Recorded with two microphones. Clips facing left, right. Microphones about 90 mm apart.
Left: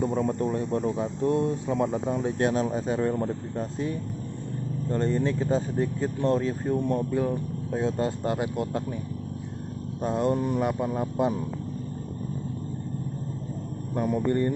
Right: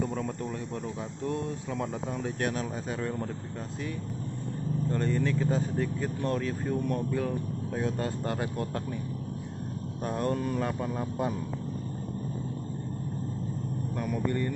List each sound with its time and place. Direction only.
0.0 s speech: 20° left (ahead or behind)
4.9 s speech: 25° left (ahead or behind)
10.0 s speech: 20° left (ahead or behind)
13.9 s speech: 25° left (ahead or behind)